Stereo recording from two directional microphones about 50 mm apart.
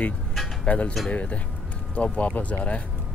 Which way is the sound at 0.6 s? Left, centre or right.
Left.